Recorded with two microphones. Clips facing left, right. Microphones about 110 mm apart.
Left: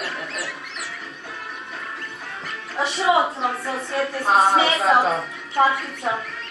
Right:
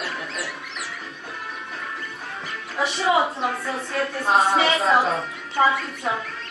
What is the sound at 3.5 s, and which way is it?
Speech, 30° left (ahead or behind).